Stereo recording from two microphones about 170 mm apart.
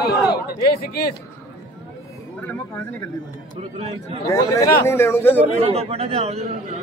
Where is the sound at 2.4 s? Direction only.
10° left (ahead or behind).